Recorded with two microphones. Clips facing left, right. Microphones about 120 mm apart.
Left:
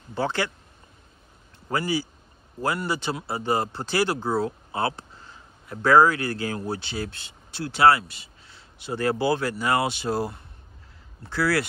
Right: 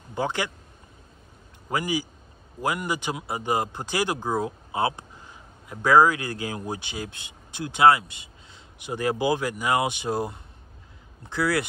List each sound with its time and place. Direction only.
0.1 s speech: 15° right (ahead or behind)
1.7 s speech: 15° right (ahead or behind)